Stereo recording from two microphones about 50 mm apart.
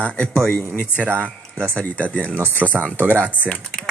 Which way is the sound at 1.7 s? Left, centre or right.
Left.